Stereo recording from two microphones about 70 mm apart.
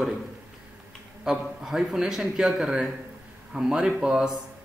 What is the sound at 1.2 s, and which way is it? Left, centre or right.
A man's voice, centre.